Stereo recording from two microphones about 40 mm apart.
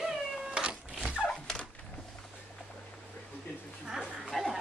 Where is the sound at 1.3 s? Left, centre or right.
Left.